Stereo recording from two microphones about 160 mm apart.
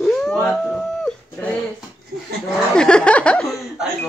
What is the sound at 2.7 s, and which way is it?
Snicker, 5° left (ahead or behind).